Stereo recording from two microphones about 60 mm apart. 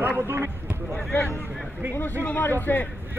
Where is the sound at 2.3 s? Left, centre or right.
Left.